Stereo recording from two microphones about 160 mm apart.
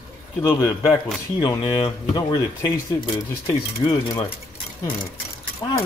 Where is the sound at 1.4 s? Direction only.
25° left (ahead or behind).